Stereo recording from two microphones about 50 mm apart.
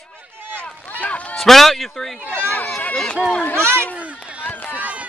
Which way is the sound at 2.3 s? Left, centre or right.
Left.